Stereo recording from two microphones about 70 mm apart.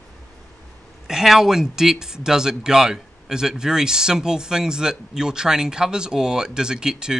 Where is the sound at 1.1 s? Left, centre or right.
Centre.